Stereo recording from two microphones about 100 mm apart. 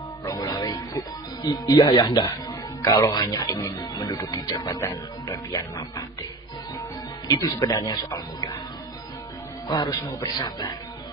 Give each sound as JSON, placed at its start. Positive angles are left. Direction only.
{"t": 0.2, "sound": "music", "side_deg": 35}
{"t": 7.2, "sound": "speech", "side_deg": 40}
{"t": 9.7, "sound": "speech", "side_deg": 45}